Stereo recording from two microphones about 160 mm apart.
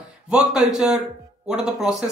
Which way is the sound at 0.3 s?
5° right (ahead or behind).